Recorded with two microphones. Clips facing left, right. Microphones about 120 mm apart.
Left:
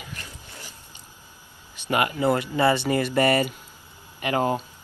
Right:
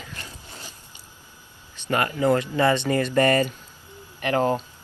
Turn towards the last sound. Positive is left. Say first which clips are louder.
# right 2 dB
turn(degrees=10)  # may be behind; listen again after turning